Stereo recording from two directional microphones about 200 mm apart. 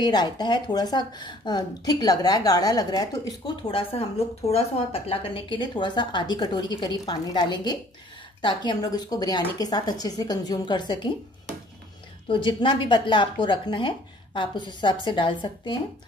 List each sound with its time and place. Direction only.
0.0 s a woman's voice: 20° left (ahead or behind)
12.3 s a woman's voice: 25° left (ahead or behind)